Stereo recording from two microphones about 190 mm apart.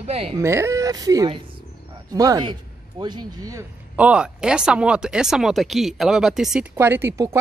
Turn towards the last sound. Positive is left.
turn(degrees=-15)  # may be behind; listen again after turning